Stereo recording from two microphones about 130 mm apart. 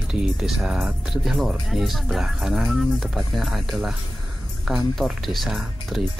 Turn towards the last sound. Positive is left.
turn(degrees=0)  # may be behind; listen again after turning